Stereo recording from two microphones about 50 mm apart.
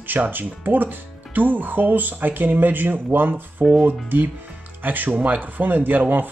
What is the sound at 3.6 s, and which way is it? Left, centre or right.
Speech, centre.